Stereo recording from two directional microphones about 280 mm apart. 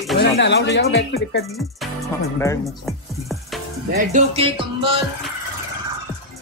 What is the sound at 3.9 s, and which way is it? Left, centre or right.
Speech, right.